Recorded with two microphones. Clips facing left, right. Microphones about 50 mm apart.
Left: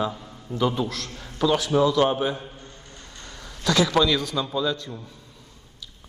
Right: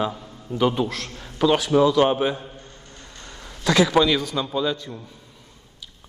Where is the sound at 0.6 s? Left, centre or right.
Right.